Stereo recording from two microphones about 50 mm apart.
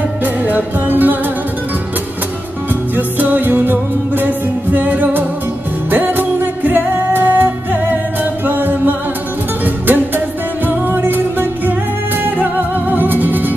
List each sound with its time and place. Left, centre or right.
0.2 s music: right
3.0 s music: right
4.7 s music: right